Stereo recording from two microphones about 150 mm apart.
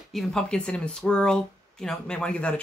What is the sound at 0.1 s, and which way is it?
Speech, 5° left (ahead or behind).